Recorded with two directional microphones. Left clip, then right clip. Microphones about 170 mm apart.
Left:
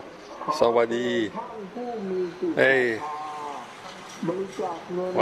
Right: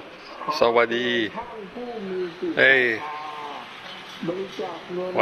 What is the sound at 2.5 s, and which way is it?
Speech, 25° left (ahead or behind).